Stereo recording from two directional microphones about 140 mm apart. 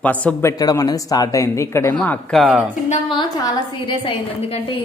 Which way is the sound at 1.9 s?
10° left (ahead or behind).